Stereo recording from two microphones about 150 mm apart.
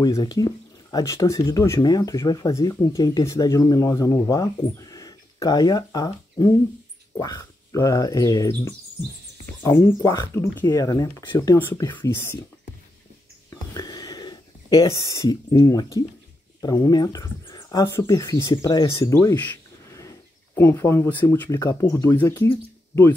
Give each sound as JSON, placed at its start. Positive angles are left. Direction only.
{"t": 0.0, "sound": "speech", "side_deg": 25}
{"t": 11.8, "sound": "speech", "side_deg": 30}
{"t": 12.1, "sound": "speech", "side_deg": 15}
{"t": 13.5, "sound": "a sound", "side_deg": 25}
{"t": 16.6, "sound": "speech", "side_deg": 25}
{"t": 20.5, "sound": "speech", "side_deg": 15}